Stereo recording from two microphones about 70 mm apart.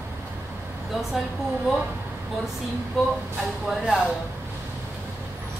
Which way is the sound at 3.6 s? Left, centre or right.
Centre.